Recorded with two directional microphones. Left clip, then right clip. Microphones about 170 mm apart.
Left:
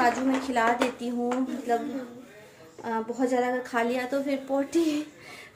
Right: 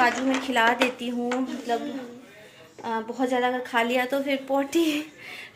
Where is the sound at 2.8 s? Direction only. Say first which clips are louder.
Right 1 dB; 5° left (ahead or behind).